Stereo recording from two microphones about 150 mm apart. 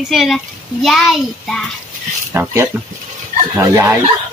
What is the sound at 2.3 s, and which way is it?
Speech, 15° right (ahead or behind).